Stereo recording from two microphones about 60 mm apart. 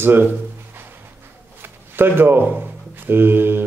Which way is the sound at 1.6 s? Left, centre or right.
Right.